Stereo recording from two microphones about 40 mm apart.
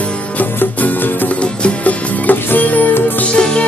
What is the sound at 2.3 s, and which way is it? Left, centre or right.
Music, left.